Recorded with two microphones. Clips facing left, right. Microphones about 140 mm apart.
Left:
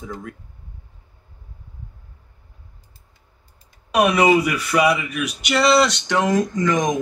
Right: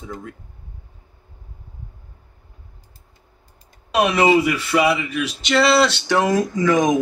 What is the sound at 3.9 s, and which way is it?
Speech, 30° right (ahead or behind).